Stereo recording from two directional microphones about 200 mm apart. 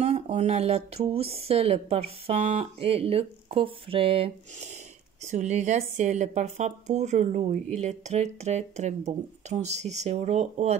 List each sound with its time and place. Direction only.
0.0 s a woman's voice: 35° right (ahead or behind)